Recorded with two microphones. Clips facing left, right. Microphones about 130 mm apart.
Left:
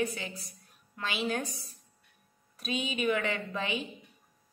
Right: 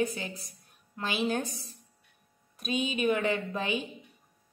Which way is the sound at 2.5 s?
20° right (ahead or behind).